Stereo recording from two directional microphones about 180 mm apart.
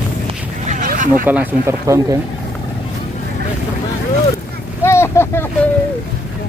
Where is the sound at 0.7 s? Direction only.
45° right (ahead or behind).